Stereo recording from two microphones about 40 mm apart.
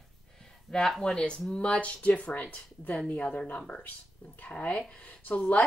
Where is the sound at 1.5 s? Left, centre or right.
Left.